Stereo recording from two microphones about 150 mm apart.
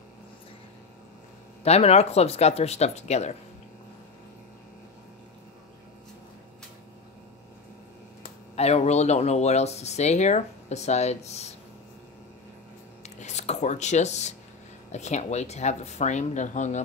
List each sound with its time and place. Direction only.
1.6 s speech: 45° left (ahead or behind)
8.5 s speech: 45° left (ahead or behind)
13.2 s speech: 50° left (ahead or behind)